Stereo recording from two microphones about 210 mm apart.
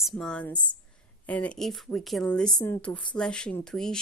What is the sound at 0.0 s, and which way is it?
Speech, centre (ahead or behind).